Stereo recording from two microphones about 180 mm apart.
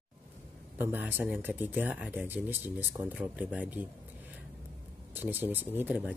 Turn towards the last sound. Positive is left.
turn(degrees=-10)  # may be behind; listen again after turning